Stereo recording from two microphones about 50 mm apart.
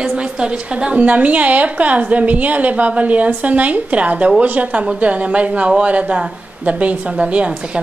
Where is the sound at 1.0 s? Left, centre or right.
Right.